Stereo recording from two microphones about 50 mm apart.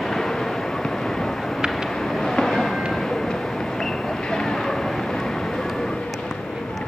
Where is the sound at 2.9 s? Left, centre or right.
Centre.